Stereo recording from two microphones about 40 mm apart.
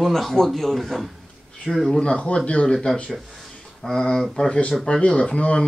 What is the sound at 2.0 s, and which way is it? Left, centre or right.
Speech, left.